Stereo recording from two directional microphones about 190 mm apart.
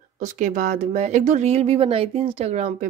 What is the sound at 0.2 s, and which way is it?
Speech, 40° right (ahead or behind).